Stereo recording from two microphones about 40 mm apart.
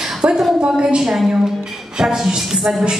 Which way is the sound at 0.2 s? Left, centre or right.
Right.